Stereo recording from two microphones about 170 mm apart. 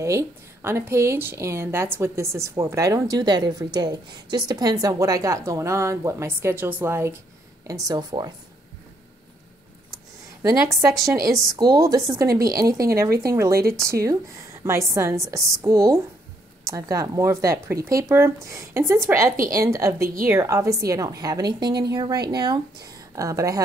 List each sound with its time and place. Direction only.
0.0 s a woman's voice: 15° right (ahead or behind)
10.4 s a woman's voice: 20° right (ahead or behind)